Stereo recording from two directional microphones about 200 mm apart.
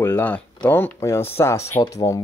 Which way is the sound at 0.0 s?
10° left (ahead or behind).